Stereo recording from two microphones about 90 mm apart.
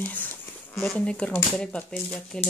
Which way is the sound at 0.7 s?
30° left (ahead or behind).